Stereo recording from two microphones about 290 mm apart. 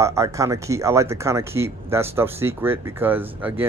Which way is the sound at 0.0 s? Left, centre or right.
Centre.